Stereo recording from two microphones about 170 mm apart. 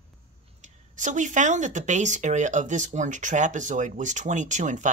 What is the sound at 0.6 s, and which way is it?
Speech, 45° right (ahead or behind).